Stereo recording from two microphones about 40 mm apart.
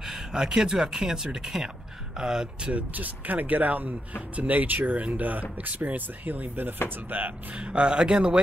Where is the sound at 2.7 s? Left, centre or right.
Right.